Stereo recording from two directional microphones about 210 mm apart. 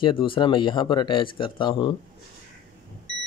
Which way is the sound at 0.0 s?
25° left (ahead or behind).